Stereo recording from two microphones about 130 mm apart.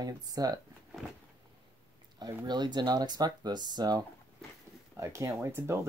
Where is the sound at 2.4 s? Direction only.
35° right (ahead or behind).